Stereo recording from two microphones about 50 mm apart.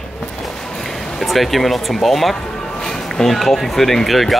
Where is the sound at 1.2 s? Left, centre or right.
Centre.